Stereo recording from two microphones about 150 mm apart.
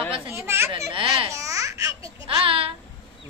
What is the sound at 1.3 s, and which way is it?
Baby laughter, 20° right (ahead or behind).